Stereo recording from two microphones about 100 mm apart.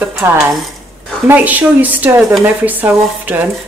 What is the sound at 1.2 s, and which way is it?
A woman's voice, 15° right (ahead or behind).